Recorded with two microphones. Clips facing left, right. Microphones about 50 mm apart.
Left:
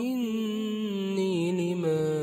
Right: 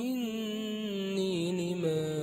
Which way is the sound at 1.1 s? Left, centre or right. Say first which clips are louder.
Left 4 dB; left.